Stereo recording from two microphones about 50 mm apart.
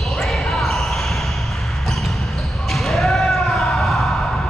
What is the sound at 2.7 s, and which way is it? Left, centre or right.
Basketball bounce, centre.